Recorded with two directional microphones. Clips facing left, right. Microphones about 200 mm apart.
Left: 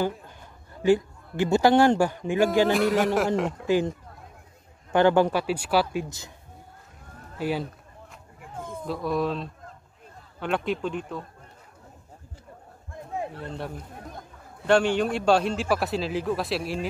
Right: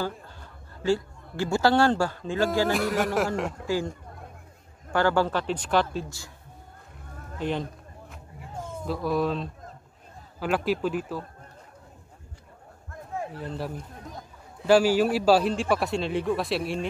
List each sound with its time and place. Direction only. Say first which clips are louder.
0.4 s a man's voice: left 4 dB; 15° left (ahead or behind)
2.7 s a man's voice: left 3 dB; centre (ahead or behind)
3.6 s speech: left 5 dB; 20° left (ahead or behind)
4.9 s speech: left 4 dB; 20° left (ahead or behind)
6.0 s speech: left 2 dB; 20° left (ahead or behind)
7.3 s speech: left 1 dB; 5° left (ahead or behind)
8.8 s a man's voice: right 1 dB; centre (ahead or behind)
13.1 s a sound: left 1 dB; 20° left (ahead or behind)
14.7 s a man's voice: right 2 dB; 5° right (ahead or behind)